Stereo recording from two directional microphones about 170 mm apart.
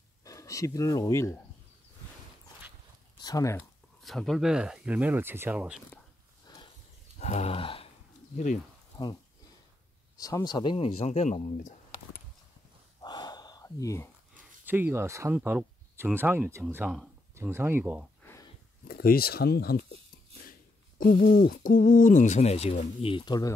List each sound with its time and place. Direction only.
0.2 s speech: 20° left (ahead or behind)
3.2 s speech: 20° left (ahead or behind)
4.0 s speech: centre (ahead or behind)
6.5 s horse: 25° left (ahead or behind)
7.2 s a sound: 40° left (ahead or behind)
10.1 s speech: 20° left (ahead or behind)
11.1 s speech: 40° left (ahead or behind)
13.0 s gasp: 25° left (ahead or behind)
14.6 s speech: 10° right (ahead or behind)
18.2 s a sound: 15° left (ahead or behind)
18.9 s speech: 60° left (ahead or behind)
21.5 s speech: 55° left (ahead or behind)
23.1 s speech: 25° left (ahead or behind)